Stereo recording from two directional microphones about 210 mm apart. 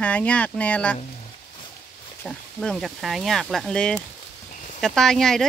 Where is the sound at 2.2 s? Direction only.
Centre (ahead or behind).